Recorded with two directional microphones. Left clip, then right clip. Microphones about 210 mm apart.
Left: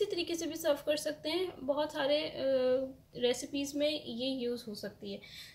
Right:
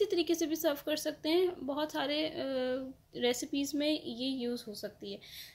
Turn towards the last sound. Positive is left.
turn(degrees=-50)  # may be behind; listen again after turning